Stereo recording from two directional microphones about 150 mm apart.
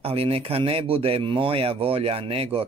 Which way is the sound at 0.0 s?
40° right (ahead or behind).